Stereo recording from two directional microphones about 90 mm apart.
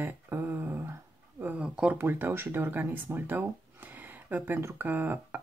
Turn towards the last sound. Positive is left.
turn(degrees=-20)  # may be behind; listen again after turning